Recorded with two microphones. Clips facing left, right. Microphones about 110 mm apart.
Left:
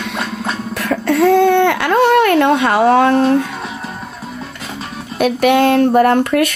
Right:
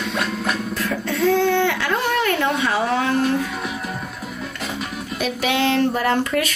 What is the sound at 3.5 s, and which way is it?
Music, 30° left (ahead or behind).